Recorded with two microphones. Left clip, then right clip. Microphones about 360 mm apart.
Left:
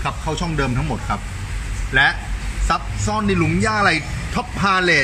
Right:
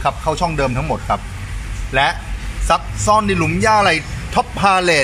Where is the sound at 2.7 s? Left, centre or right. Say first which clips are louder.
Right 7 dB; centre.